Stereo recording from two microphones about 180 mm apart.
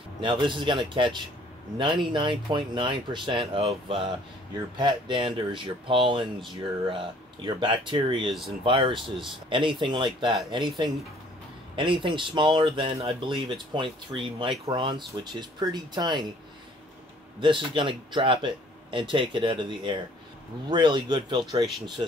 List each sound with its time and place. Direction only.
0.2 s speech: 25° right (ahead or behind)
7.4 s speech: 25° right (ahead or behind)
8.3 s speech: centre (ahead or behind)
8.6 s speech: 30° right (ahead or behind)
14.1 s speech: 15° right (ahead or behind)
17.4 s speech: 25° right (ahead or behind)